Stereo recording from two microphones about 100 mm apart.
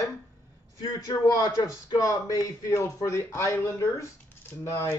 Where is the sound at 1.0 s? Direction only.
40° left (ahead or behind).